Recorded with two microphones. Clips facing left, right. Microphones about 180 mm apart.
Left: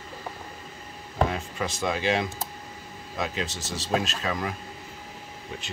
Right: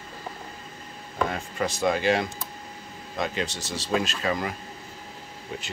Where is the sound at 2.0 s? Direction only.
Centre (ahead or behind).